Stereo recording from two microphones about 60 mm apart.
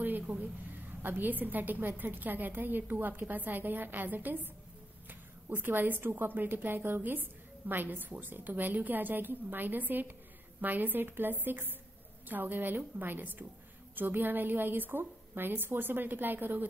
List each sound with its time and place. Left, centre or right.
0.3 s a woman's voice: right
1.0 s a woman's voice: right
5.5 s a woman's voice: right